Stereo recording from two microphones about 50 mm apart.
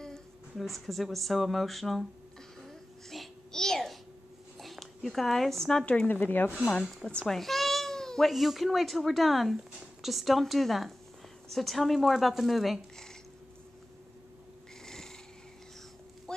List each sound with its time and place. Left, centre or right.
0.6 s speech: centre
2.6 s music: centre
4.6 s speech: centre
6.0 s speech: left
7.2 s babbling: centre
8.3 s speech: centre
14.9 s cat: centre
16.3 s a sound: centre